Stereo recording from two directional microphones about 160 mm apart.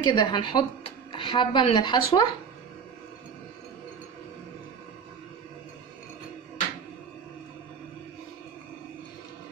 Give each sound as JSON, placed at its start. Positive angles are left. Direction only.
{"t": 0.0, "sound": "speech", "side_deg": 30}